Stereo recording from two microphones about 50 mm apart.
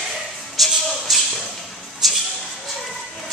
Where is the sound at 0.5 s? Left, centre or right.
Centre.